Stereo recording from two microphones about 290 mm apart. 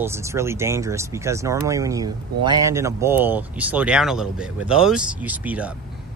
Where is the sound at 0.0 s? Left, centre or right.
Centre.